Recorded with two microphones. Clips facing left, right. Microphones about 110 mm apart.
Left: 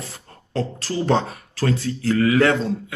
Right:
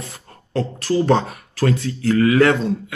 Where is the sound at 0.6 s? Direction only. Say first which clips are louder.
Right 5 dB; 30° left (ahead or behind).